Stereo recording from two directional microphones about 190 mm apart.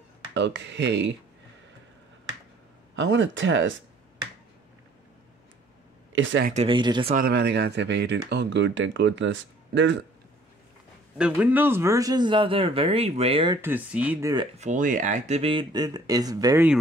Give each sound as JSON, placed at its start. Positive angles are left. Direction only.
{"t": 0.3, "sound": "speech", "side_deg": -65}
{"t": 3.0, "sound": "speech", "side_deg": -80}
{"t": 6.1, "sound": "speech", "side_deg": -85}
{"t": 6.4, "sound": "speech", "side_deg": -35}
{"t": 6.7, "sound": "speech", "side_deg": -25}
{"t": 7.2, "sound": "speech", "side_deg": -55}
{"t": 11.1, "sound": "speech", "side_deg": -5}
{"t": 13.6, "sound": "speech", "side_deg": -10}
{"t": 14.6, "sound": "speech", "side_deg": -40}